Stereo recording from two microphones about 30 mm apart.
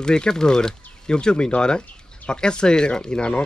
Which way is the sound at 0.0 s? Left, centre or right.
Left.